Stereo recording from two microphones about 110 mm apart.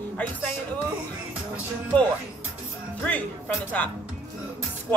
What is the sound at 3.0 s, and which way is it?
Speech, 15° left (ahead or behind).